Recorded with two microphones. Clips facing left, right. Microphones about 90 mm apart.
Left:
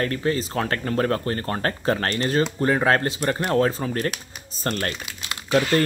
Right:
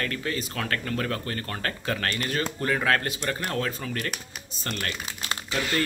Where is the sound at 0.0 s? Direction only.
30° left (ahead or behind).